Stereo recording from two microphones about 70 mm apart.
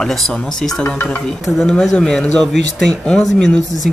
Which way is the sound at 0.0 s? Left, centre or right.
Centre.